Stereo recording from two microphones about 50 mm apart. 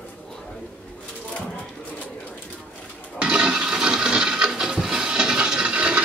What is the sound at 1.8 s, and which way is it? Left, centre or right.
Bird, left.